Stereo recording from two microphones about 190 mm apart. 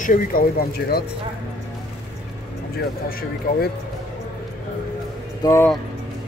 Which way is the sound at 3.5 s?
50° left (ahead or behind).